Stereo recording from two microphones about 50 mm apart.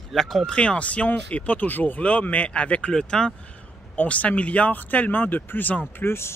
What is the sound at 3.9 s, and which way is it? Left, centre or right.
Speech, left.